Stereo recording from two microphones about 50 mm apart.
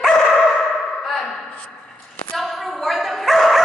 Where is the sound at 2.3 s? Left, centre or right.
Centre.